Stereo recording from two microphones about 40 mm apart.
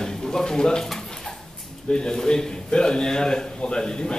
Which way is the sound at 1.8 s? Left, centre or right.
Left.